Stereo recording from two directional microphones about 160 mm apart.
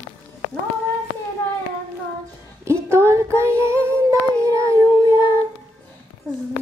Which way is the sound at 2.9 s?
15° right (ahead or behind).